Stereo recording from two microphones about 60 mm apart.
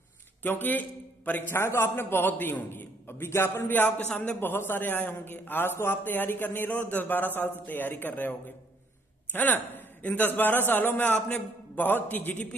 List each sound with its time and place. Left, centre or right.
0.4 s a man's voice: left
1.5 s a man's voice: left
11.1 s a man's voice: centre
11.8 s a man's voice: left